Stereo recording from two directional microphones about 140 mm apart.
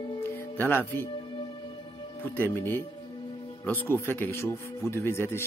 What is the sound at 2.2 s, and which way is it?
Speech, 15° left (ahead or behind).